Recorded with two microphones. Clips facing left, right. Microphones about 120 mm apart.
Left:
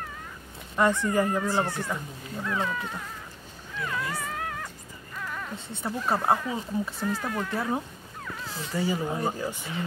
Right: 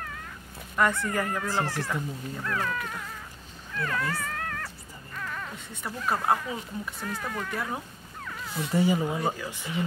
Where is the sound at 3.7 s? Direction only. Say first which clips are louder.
Right 2 dB; 15° left (ahead or behind).